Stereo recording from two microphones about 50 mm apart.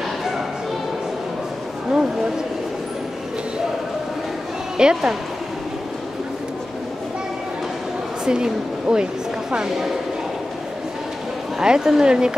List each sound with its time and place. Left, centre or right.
1.9 s speech: centre
4.7 s speech: centre
8.3 s a woman's voice: centre
11.6 s speech: centre